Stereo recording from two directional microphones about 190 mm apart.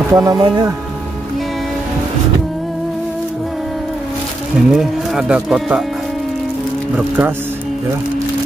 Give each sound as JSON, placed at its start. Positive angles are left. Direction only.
{"t": 0.1, "sound": "speech", "side_deg": -20}
{"t": 4.6, "sound": "speech", "side_deg": 0}
{"t": 7.0, "sound": "speech", "side_deg": -10}